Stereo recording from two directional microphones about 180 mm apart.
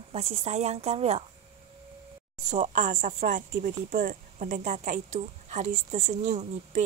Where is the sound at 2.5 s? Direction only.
40° right (ahead or behind).